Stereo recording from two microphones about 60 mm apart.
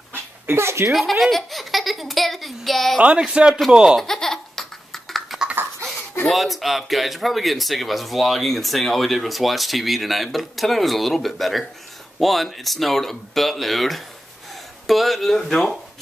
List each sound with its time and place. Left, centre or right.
0.1 s dog: right
0.7 s speech: right
1.2 s a sound: centre
3.2 s a man's voice: centre
4.0 s laughter: centre
6.2 s speech: centre